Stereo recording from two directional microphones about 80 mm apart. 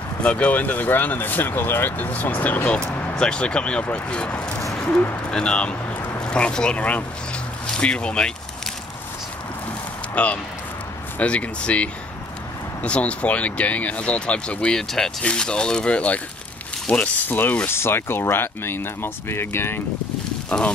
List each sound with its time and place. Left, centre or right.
0.2 s speech: centre
3.2 s speech: centre
10.1 s speech: centre
20.4 s speech: centre